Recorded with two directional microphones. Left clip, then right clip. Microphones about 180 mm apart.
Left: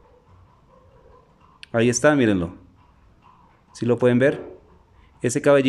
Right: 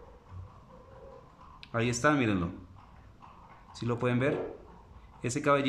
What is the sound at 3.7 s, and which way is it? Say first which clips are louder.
Speech: left 13 dB; 35° left (ahead or behind).